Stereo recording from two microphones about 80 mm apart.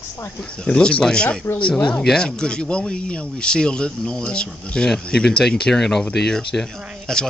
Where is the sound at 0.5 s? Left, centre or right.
Centre.